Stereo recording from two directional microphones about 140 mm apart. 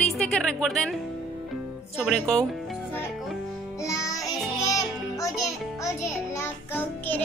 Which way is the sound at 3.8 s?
20° left (ahead or behind).